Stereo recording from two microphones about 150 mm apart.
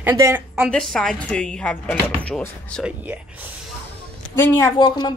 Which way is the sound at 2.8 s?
10° right (ahead or behind).